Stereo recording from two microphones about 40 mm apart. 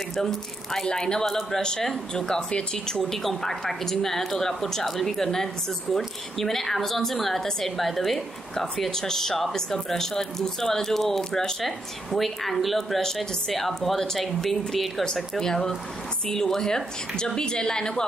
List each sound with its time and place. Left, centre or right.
0.2 s a woman's voice: centre
15.4 s a woman's voice: centre